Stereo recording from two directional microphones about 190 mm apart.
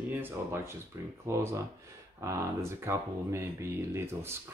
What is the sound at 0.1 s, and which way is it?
Speech, 10° right (ahead or behind).